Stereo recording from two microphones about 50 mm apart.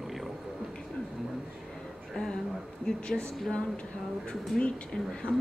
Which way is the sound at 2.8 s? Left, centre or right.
Centre.